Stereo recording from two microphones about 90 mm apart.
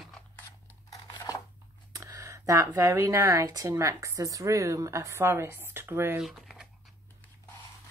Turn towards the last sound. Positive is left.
turn(degrees=-5)  # may be behind; listen again after turning